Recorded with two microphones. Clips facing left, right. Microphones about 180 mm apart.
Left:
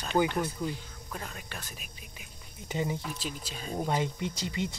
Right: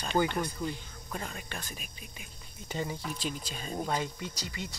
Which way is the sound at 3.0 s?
5° left (ahead or behind).